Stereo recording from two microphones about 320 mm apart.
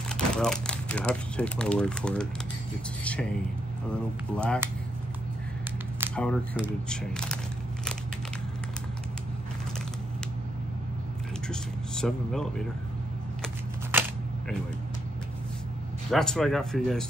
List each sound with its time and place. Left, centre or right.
0.1 s speech: centre
6.1 s speech: centre
11.4 s speech: centre
13.9 s single-lens reflex camera: centre
16.1 s speech: centre